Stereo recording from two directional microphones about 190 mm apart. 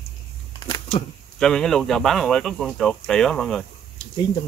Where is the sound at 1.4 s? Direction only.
Centre (ahead or behind).